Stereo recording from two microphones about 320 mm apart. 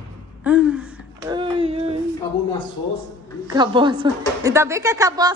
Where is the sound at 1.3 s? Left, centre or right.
Centre.